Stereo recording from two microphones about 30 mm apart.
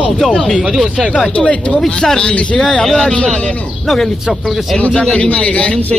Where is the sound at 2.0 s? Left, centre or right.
Left.